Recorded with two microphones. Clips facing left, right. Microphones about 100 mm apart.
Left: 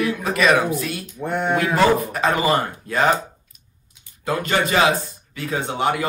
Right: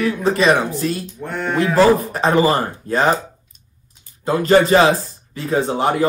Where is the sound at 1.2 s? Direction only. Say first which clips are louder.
Even; 10° left (ahead or behind).